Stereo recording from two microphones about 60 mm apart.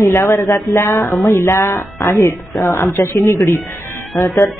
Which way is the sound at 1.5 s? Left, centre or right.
Left.